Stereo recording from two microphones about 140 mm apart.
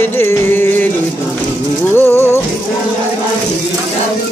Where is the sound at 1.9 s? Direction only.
15° left (ahead or behind).